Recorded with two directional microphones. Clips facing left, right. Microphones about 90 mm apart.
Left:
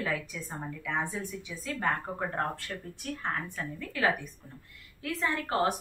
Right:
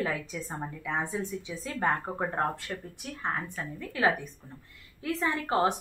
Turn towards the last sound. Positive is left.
turn(degrees=-20)  # may be behind; listen again after turning